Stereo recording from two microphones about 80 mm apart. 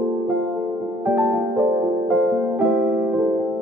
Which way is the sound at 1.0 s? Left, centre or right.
Centre.